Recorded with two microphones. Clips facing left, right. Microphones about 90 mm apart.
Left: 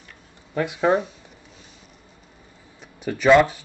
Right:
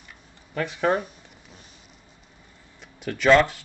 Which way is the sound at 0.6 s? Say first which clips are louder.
Left 3 dB; 15° left (ahead or behind).